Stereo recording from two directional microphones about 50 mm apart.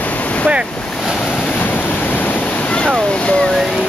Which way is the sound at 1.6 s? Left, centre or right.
Left.